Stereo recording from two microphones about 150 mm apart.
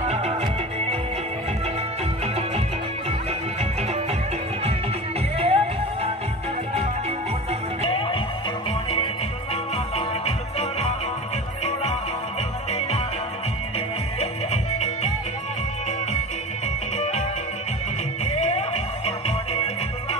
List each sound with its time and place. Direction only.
0.1 s music: 45° right (ahead or behind)
5.4 s music: 40° right (ahead or behind)
7.9 s music: 40° left (ahead or behind)
9.9 s music: 45° left (ahead or behind)
14.2 s music: 45° left (ahead or behind)
18.2 s music: 45° left (ahead or behind)